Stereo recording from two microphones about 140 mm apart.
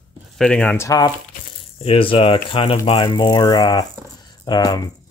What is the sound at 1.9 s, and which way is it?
Speech, 40° left (ahead or behind).